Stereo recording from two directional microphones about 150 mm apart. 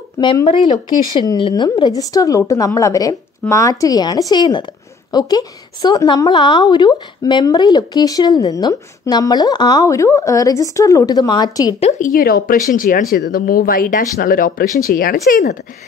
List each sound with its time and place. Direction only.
0.2 s a woman's voice: 30° left (ahead or behind)
11.8 s speech: 50° left (ahead or behind)
12.1 s speech: 80° left